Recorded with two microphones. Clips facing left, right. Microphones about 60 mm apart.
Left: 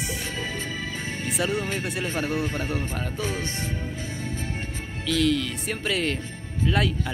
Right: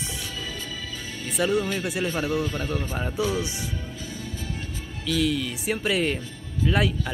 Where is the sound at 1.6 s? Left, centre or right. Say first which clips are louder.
Right 2 dB; left.